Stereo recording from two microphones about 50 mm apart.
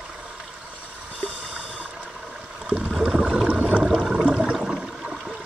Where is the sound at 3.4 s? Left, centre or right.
Right.